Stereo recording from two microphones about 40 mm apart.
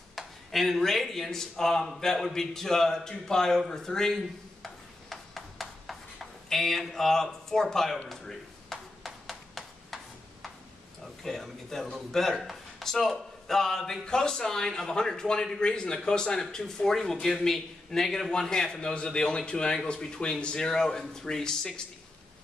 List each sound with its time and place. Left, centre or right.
0.1 s a man's voice: centre
5.1 s a sound: centre
11.2 s a man's voice: centre